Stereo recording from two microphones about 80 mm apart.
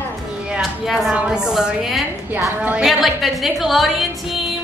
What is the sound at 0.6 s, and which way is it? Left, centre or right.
Speech, centre.